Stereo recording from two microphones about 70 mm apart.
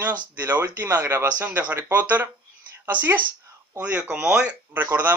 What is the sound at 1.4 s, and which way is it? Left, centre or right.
Speech, right.